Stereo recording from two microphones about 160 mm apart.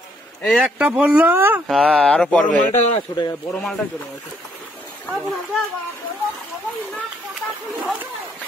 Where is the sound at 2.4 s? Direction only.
50° left (ahead or behind).